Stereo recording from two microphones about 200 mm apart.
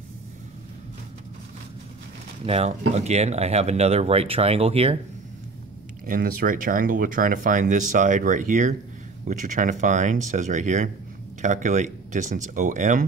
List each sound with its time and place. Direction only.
2.4 s speech: 30° right (ahead or behind)
6.0 s speech: 45° right (ahead or behind)